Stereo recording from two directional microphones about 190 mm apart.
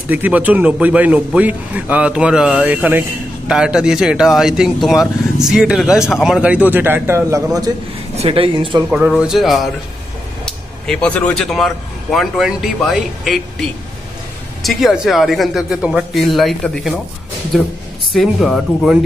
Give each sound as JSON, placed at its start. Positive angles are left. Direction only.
{"t": 0.1, "sound": "speech", "side_deg": -10}
{"t": 8.2, "sound": "speech", "side_deg": -30}
{"t": 8.9, "sound": "speech", "side_deg": -5}
{"t": 14.6, "sound": "speech", "side_deg": 0}